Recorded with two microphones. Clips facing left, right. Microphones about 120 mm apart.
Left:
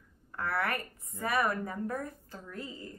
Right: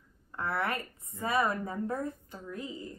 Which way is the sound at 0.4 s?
20° right (ahead or behind).